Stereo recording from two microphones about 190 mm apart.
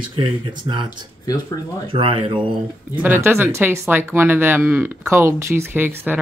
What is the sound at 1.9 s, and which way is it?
Speech, 30° right (ahead or behind).